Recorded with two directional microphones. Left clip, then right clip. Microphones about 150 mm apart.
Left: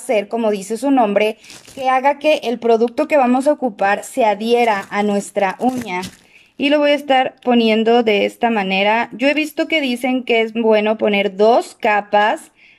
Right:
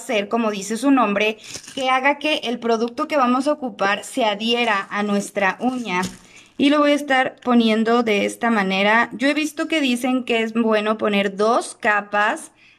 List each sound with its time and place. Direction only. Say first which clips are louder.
0.0 s a woman's voice: left 4 dB; 30° left (ahead or behind)